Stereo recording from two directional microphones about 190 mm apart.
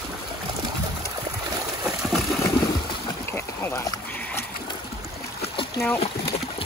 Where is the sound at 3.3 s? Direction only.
15° left (ahead or behind).